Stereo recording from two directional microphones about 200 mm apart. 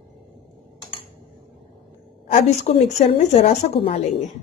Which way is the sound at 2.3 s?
35° left (ahead or behind).